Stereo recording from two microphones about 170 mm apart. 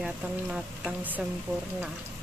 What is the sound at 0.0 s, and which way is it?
A woman's voice, 5° right (ahead or behind).